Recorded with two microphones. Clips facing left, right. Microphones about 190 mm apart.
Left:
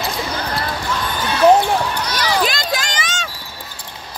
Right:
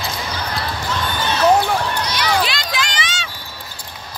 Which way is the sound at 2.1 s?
45° left (ahead or behind).